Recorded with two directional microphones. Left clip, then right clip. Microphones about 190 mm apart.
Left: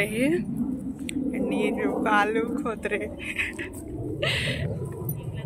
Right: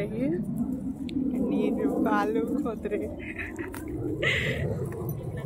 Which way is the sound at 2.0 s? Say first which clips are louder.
Left 5 dB; centre (ahead or behind).